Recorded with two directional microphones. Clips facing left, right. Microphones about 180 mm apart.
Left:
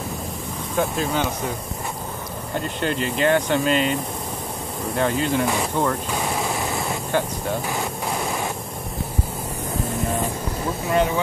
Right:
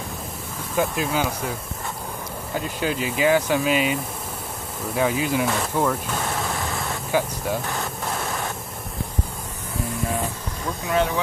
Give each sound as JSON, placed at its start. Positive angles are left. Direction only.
{"t": 0.7, "sound": "speech", "side_deg": -5}
{"t": 2.5, "sound": "speech", "side_deg": -5}
{"t": 6.0, "sound": "vehicle", "side_deg": 10}
{"t": 6.5, "sound": "vehicle", "side_deg": 20}
{"t": 7.1, "sound": "vehicle", "side_deg": -5}
{"t": 8.1, "sound": "waves", "side_deg": 15}
{"t": 10.9, "sound": "speech", "side_deg": 5}